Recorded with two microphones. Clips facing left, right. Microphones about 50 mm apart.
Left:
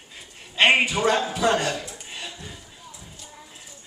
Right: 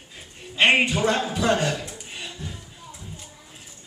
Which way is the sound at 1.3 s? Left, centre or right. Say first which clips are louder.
Even; centre.